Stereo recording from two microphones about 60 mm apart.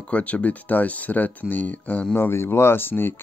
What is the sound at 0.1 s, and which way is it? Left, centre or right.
Speech, left.